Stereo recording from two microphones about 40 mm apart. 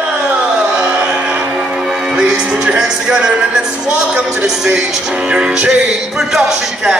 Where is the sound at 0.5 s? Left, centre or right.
Right.